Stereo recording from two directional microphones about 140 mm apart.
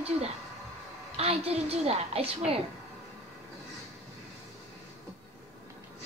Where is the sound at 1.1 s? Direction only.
45° right (ahead or behind).